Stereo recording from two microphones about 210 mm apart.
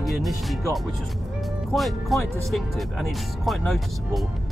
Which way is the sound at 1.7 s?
Centre (ahead or behind).